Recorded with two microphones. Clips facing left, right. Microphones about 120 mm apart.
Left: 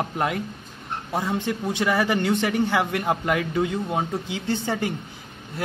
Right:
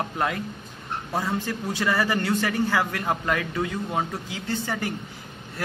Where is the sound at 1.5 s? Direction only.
15° left (ahead or behind).